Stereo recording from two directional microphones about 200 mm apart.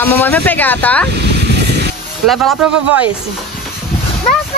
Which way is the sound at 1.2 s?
55° right (ahead or behind).